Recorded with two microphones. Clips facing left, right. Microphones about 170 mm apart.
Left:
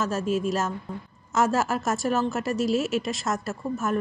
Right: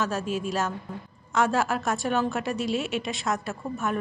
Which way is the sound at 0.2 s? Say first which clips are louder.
Left 4 dB; 40° left (ahead or behind).